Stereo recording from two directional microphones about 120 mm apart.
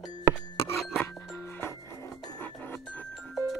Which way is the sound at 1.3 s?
20° left (ahead or behind).